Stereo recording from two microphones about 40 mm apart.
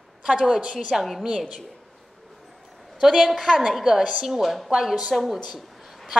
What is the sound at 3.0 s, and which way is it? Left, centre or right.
A woman's voice, centre.